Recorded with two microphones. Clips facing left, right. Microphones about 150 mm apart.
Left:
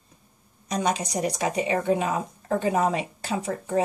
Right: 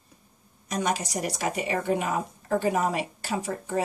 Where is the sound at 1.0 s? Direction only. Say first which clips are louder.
Left 3 dB; 20° left (ahead or behind).